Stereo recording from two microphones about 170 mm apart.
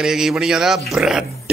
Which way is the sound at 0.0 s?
5° right (ahead or behind).